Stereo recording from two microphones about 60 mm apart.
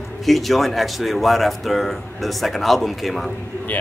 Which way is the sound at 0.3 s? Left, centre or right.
Centre.